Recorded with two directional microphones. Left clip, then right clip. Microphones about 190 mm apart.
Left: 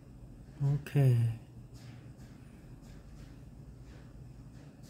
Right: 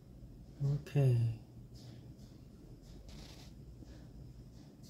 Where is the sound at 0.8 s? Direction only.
20° left (ahead or behind).